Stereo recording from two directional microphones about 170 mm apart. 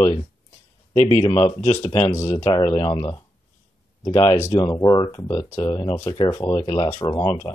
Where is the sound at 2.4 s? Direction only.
25° left (ahead or behind).